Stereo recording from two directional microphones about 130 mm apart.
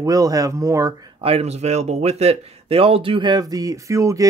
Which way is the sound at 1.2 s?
50° right (ahead or behind).